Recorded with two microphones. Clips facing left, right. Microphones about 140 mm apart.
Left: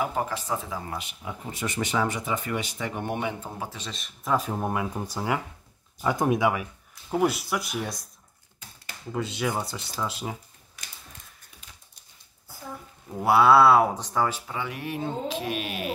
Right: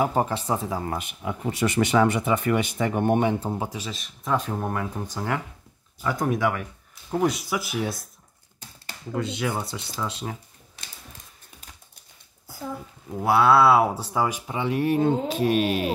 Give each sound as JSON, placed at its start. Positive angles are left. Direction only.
{"t": 0.0, "sound": "speech", "side_deg": -35}
{"t": 0.8, "sound": "speech", "side_deg": -50}
{"t": 3.3, "sound": "speech", "side_deg": -35}
{"t": 3.5, "sound": "a man's voice", "side_deg": -20}
{"t": 3.8, "sound": "speech", "side_deg": 0}
{"t": 5.9, "sound": "speech", "side_deg": 20}
{"t": 9.1, "sound": "speech", "side_deg": 0}
{"t": 10.8, "sound": "mechanisms", "side_deg": -30}
{"t": 13.1, "sound": "speech", "side_deg": 0}
{"t": 14.6, "sound": "speech", "side_deg": -30}